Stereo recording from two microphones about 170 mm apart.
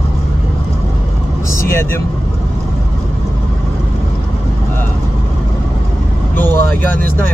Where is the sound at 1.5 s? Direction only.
15° left (ahead or behind).